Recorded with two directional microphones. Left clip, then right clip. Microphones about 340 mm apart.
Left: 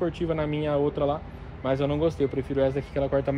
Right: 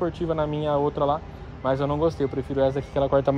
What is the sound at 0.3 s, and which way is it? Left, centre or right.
Speech, centre.